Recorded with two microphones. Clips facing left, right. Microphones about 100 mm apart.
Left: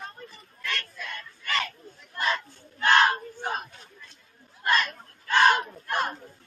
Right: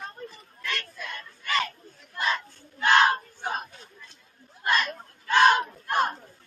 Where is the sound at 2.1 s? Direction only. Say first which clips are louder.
Even; 10° right (ahead or behind).